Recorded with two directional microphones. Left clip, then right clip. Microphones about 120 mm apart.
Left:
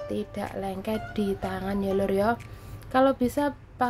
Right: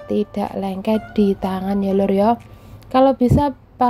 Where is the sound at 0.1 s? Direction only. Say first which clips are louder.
Right 14 dB; 35° right (ahead or behind).